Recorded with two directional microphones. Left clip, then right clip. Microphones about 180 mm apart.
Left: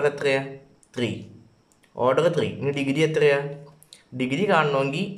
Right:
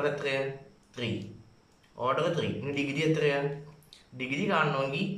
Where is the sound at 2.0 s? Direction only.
50° left (ahead or behind).